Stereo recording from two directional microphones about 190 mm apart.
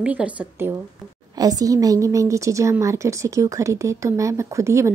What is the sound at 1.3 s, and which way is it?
Speech, 20° right (ahead or behind).